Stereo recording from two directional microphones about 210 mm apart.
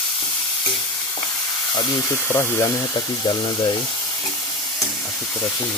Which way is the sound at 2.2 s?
10° left (ahead or behind).